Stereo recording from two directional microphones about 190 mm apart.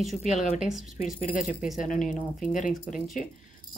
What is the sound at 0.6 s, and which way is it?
Speech, centre (ahead or behind).